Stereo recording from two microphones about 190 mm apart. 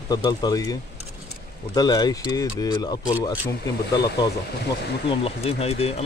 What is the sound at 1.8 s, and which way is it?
Speech, 20° left (ahead or behind).